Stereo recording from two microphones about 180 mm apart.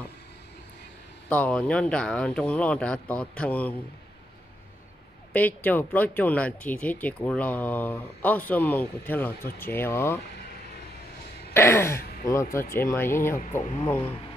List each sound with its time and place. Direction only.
1.3 s speech: 5° left (ahead or behind)
5.3 s speech: 10° left (ahead or behind)
11.5 s speech: 15° left (ahead or behind)
13.4 s speech: 40° left (ahead or behind)